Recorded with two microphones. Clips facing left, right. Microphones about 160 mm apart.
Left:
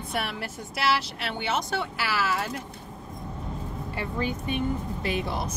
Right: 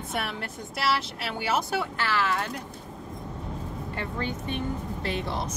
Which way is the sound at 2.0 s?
10° left (ahead or behind).